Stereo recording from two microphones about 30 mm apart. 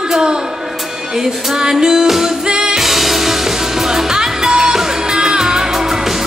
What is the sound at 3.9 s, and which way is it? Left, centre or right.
Music, centre.